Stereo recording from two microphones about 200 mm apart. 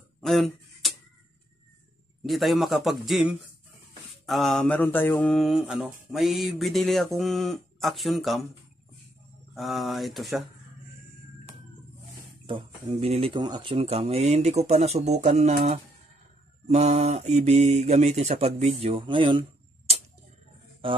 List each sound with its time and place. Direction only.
0.2 s a sound: centre (ahead or behind)
2.2 s mantra: centre (ahead or behind)
9.6 s mantra: centre (ahead or behind)
12.4 s speech: 25° right (ahead or behind)